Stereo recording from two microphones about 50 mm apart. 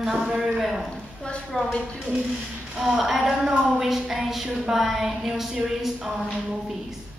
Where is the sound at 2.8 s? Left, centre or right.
Centre.